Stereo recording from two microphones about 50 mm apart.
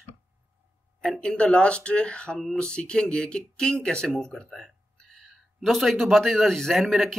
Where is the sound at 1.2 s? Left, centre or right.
Left.